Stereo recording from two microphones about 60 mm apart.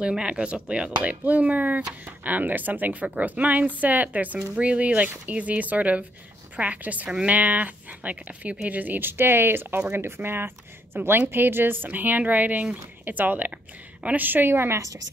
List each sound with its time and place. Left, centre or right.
0.0 s speech: centre; by 14.9 s right